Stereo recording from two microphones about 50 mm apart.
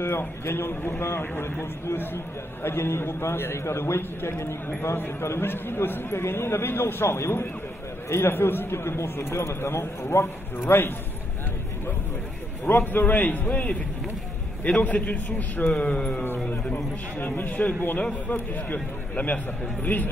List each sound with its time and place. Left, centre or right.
0.0 s a man's voice: left
12.6 s a man's voice: left
15.7 s a sound: centre
16.4 s a man's voice: left